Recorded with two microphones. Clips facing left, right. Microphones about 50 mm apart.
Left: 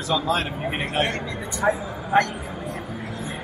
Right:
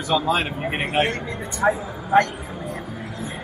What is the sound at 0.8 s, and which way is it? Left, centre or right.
Speech, right.